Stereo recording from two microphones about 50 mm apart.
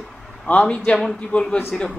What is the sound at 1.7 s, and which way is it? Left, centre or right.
Speech, centre.